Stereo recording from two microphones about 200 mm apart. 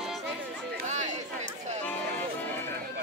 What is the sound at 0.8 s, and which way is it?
Chatter, 35° right (ahead or behind).